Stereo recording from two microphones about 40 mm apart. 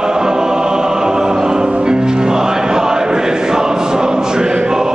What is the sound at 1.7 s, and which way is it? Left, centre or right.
Music, right.